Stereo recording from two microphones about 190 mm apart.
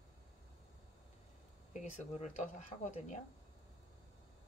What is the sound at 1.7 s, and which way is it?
Speech, 40° left (ahead or behind).